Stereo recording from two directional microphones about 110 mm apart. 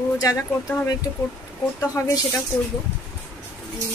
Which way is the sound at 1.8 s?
25° left (ahead or behind).